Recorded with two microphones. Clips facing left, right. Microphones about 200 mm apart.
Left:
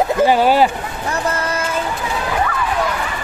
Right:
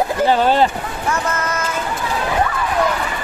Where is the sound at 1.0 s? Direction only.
30° left (ahead or behind).